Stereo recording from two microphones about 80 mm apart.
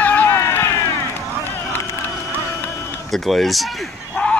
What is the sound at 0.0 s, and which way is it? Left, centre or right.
Run, left.